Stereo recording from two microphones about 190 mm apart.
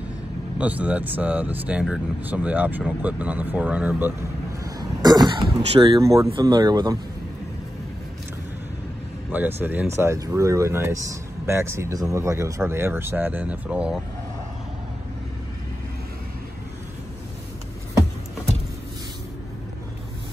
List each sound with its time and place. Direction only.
0.6 s speech: 10° right (ahead or behind)
4.6 s throat clearing: 20° right (ahead or behind)
6.0 s speech: 15° right (ahead or behind)
9.6 s speech: 10° right (ahead or behind)